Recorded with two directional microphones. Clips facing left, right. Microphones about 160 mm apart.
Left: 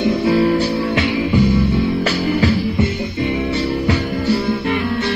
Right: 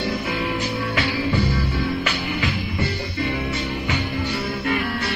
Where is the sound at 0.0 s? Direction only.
30° left (ahead or behind).